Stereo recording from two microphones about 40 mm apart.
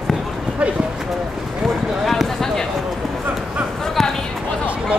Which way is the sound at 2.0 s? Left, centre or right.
Centre.